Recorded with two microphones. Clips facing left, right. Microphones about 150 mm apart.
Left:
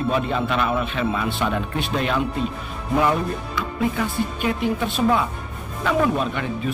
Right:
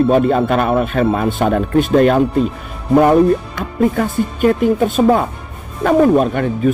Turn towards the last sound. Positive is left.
turn(degrees=-50)  # may be behind; listen again after turning